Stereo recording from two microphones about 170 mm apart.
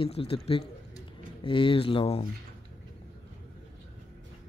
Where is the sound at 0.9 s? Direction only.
30° left (ahead or behind).